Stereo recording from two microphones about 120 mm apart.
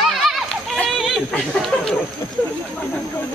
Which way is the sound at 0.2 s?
Centre (ahead or behind).